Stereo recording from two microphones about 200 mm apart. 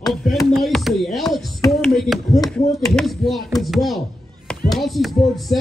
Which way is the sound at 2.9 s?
Centre (ahead or behind).